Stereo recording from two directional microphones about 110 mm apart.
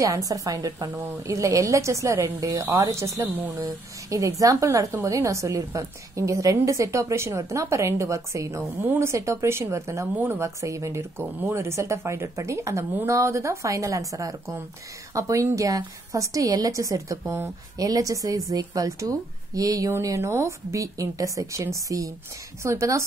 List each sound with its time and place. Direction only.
0.0 s a woman's voice: 30° right (ahead or behind)